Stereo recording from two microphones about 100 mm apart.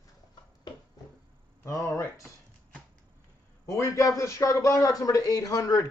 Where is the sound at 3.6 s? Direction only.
30° left (ahead or behind).